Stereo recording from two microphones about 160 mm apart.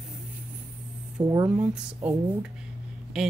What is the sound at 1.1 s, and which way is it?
Speech, 25° right (ahead or behind).